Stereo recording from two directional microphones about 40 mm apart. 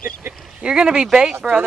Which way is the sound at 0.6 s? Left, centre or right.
Right.